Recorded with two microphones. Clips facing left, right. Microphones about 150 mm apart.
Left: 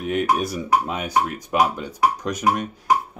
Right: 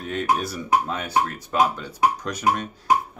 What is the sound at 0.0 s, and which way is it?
Speech, 10° left (ahead or behind).